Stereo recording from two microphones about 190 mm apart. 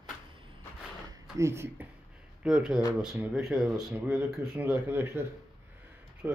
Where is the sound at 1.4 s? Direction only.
15° right (ahead or behind).